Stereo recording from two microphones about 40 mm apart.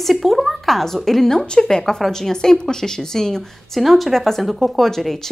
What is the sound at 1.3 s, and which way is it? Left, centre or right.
Speech, left.